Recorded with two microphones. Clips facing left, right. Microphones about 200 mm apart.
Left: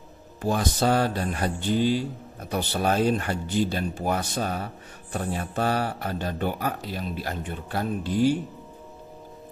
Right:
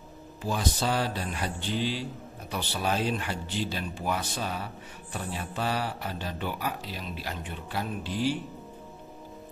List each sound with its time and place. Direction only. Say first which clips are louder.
0.4 s speech: left 5 dB; 50° left (ahead or behind)